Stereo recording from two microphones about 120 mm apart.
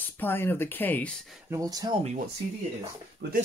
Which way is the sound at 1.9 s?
60° right (ahead or behind).